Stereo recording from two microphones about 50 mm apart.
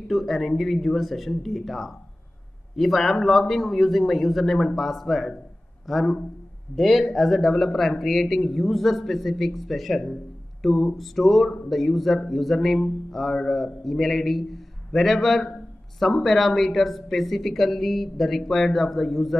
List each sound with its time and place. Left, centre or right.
0.1 s speech: centre
10.6 s a sound: centre
11.0 s speech: centre